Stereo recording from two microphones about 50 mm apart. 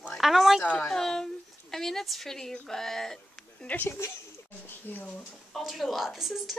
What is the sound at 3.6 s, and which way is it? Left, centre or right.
Speech, left.